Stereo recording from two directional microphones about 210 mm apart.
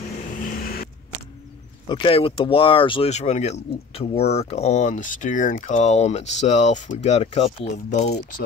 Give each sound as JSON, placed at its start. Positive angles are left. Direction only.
{"t": 1.9, "sound": "speech", "side_deg": 25}